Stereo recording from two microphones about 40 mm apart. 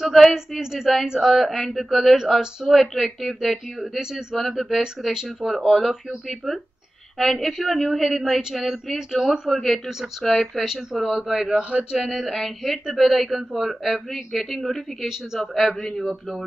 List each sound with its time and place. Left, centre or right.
0.0 s speech: centre
0.3 s a man's voice: centre
4.0 s speech: centre
4.4 s a man's voice: centre
12.0 s a man's voice: centre